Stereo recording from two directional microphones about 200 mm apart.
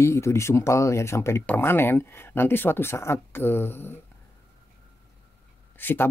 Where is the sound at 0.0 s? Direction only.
15° left (ahead or behind).